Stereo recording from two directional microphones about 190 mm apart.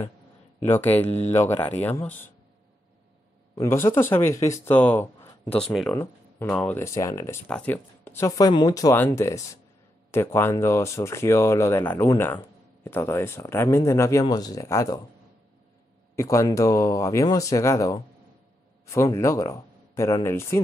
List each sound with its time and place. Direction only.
0.7 s speech: 10° left (ahead or behind)
1.0 s speech: 35° left (ahead or behind)
1.3 s speech: 15° left (ahead or behind)
3.5 s speech: 15° left (ahead or behind)
16.2 s speech: 15° left (ahead or behind)